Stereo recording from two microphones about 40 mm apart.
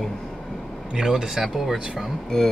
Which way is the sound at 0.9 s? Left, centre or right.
Centre.